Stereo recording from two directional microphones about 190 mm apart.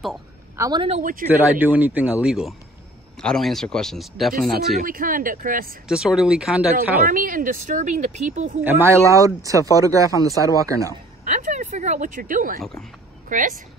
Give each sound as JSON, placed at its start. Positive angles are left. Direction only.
{"t": 0.6, "sound": "a man's voice", "side_deg": -20}
{"t": 0.8, "sound": "speech", "side_deg": -35}
{"t": 1.5, "sound": "speech", "side_deg": -10}
{"t": 4.3, "sound": "speech", "side_deg": -50}
{"t": 5.9, "sound": "speech", "side_deg": -5}
{"t": 7.1, "sound": "speech", "side_deg": -45}
{"t": 8.6, "sound": "speech", "side_deg": -10}
{"t": 11.2, "sound": "speech", "side_deg": -40}